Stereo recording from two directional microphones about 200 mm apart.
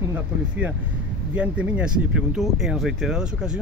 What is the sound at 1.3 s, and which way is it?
Speech, 5° right (ahead or behind).